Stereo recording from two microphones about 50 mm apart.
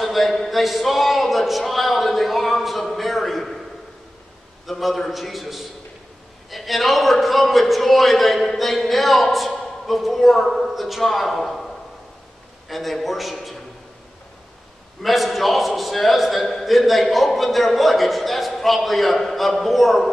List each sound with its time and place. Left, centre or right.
0.0 s a sound: centre
4.6 s a man's voice: centre
15.0 s a man's voice: centre